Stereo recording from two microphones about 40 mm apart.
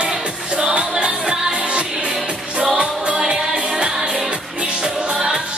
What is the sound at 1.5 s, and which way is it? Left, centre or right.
Music, right.